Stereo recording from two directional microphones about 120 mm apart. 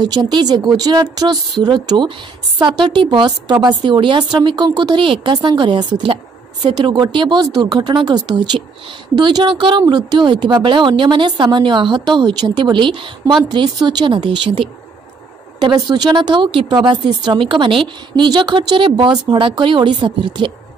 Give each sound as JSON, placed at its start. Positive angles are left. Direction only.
{"t": 0.0, "sound": "a woman's voice", "side_deg": -35}